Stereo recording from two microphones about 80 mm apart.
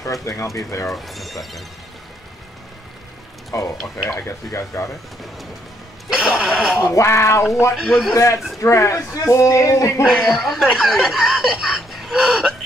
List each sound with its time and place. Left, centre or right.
0.0 s speech: left
0.8 s speech: centre
3.5 s speech: left
6.0 s speech: centre
6.8 s speech: left
7.7 s speech: centre
8.1 s speech: left
10.0 s speech: centre
11.6 s a sound: centre